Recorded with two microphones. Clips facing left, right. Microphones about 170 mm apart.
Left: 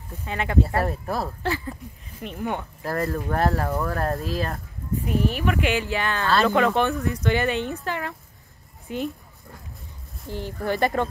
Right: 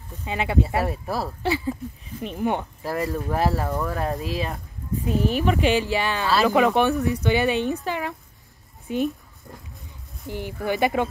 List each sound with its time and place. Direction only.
0.2 s speech: 15° right (ahead or behind)
2.8 s speech: 5° right (ahead or behind)
5.0 s speech: 25° right (ahead or behind)
10.4 s speech: 5° right (ahead or behind)